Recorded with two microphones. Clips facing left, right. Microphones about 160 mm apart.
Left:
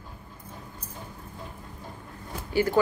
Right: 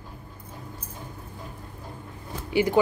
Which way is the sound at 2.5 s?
15° right (ahead or behind).